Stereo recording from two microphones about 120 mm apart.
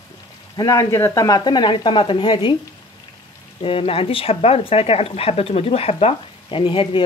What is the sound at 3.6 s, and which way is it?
Speech, 50° left (ahead or behind).